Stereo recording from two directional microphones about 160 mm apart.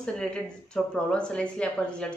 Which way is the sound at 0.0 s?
5° left (ahead or behind).